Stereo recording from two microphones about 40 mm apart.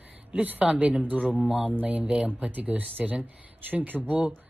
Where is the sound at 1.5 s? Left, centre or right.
Centre.